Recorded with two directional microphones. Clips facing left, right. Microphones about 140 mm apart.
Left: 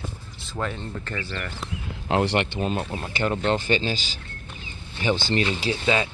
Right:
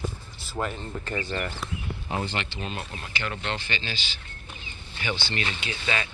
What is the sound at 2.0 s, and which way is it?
Speech, 80° left.